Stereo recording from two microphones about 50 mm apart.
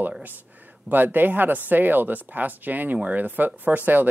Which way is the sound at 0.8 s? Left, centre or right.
Right.